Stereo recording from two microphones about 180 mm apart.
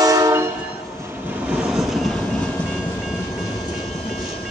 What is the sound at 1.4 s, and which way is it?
Train, 5° right (ahead or behind).